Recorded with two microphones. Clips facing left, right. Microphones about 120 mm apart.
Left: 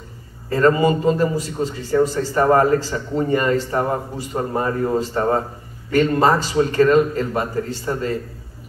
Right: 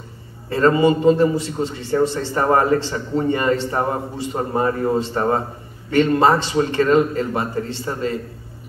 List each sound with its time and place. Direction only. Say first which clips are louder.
0.5 s a man's voice: even; 25° right (ahead or behind)